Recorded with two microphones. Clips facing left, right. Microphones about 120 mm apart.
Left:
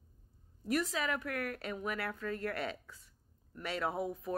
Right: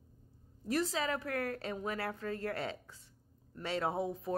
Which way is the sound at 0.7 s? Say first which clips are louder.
Even; 30° right (ahead or behind).